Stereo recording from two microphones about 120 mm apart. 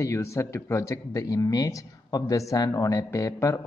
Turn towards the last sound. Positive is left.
turn(degrees=25)  # may be behind; listen again after turning